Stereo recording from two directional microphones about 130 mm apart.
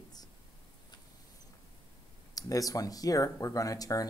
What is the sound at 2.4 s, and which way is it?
Speech, 25° left (ahead or behind).